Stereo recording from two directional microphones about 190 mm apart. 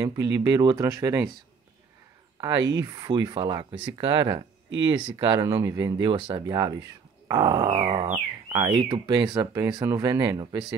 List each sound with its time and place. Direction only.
0.0 s speech: 20° right (ahead or behind)
2.3 s a sound: 20° right (ahead or behind)
2.8 s speech: 20° right (ahead or behind)